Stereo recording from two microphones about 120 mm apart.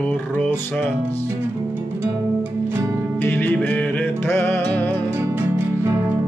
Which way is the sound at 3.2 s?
15° left (ahead or behind).